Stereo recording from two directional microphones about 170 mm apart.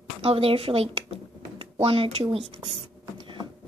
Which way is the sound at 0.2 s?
35° right (ahead or behind).